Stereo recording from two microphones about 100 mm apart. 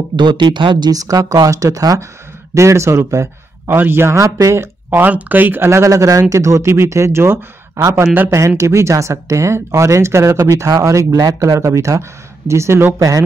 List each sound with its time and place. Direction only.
0.1 s speech: 50° right (ahead or behind); by 5.0 s 30° right (ahead or behind)
5.0 s speech: 15° right (ahead or behind)